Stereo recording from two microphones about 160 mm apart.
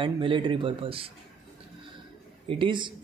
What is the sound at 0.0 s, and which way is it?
A man's voice, 30° right (ahead or behind).